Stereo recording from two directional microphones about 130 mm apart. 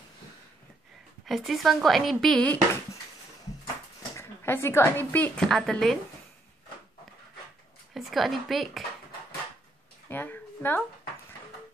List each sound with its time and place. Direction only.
1.2 s speech: centre (ahead or behind)
4.2 s a woman's voice: 20° left (ahead or behind); by 5.9 s 5° left (ahead or behind)
7.9 s speech: centre (ahead or behind)
10.0 s a sound: 15° left (ahead or behind)